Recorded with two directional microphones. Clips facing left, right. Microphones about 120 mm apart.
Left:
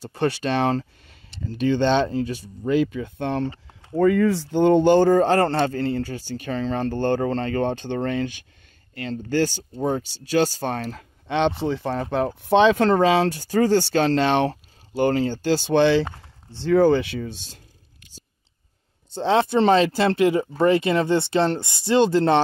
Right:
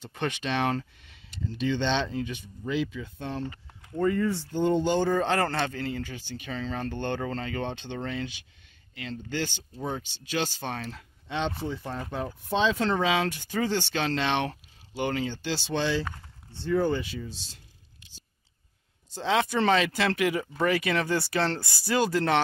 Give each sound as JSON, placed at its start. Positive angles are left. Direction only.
{"t": 0.0, "sound": "speech", "side_deg": 35}
{"t": 1.4, "sound": "speech", "side_deg": 50}
{"t": 3.9, "sound": "speech", "side_deg": 90}
{"t": 11.2, "sound": "speech", "side_deg": 70}
{"t": 11.6, "sound": "speech", "side_deg": 90}
{"t": 12.9, "sound": "speech", "side_deg": 40}
{"t": 16.5, "sound": "speech", "side_deg": 90}
{"t": 19.1, "sound": "speech", "side_deg": 30}